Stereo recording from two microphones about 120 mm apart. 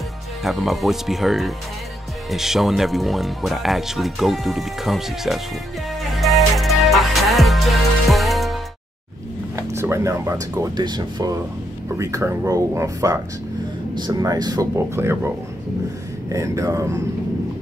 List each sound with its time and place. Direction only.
0.4 s speech: centre (ahead or behind)
6.1 s music: centre (ahead or behind)
9.6 s speech: 20° right (ahead or behind)
15.0 s speech: 20° right (ahead or behind)